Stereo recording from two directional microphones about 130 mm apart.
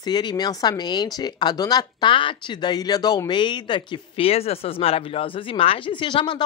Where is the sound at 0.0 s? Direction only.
35° left (ahead or behind).